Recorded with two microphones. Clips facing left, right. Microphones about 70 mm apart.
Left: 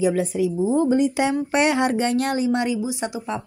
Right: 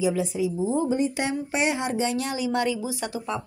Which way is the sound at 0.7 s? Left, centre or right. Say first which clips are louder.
Left 7 dB; left.